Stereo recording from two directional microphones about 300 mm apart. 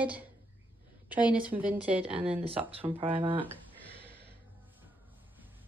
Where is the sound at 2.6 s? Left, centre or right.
Centre.